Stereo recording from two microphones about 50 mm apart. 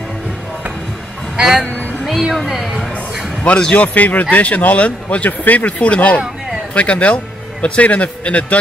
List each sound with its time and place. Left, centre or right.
1.3 s speech: centre
2.0 s a sound: centre
3.4 s a man's voice: left